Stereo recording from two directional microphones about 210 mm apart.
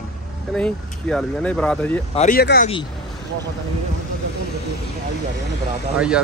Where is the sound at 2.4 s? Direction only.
50° left (ahead or behind).